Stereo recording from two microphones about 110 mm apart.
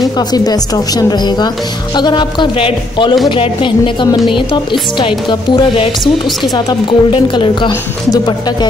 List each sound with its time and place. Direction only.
0.3 s a woman's voice: 35° left (ahead or behind)